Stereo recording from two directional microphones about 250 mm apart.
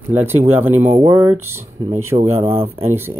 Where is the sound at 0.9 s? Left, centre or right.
Right.